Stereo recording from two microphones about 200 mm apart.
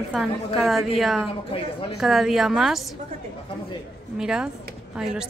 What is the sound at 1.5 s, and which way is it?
Speech, 30° left (ahead or behind).